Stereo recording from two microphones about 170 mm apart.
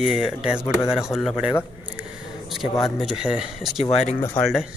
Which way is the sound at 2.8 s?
5° right (ahead or behind).